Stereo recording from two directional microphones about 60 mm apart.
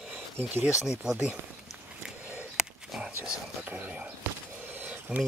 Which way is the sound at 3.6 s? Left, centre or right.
Right.